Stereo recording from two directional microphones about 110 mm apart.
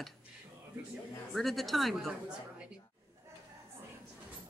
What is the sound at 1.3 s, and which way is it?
Speech, centre (ahead or behind).